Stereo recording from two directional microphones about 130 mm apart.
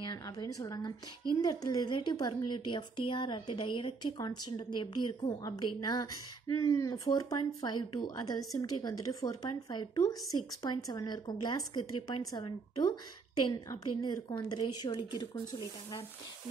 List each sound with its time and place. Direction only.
0.0 s a woman's voice: 30° left (ahead or behind)